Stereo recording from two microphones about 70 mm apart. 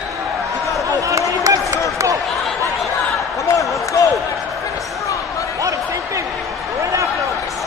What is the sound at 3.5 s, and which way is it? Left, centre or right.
Basketball bounce, left.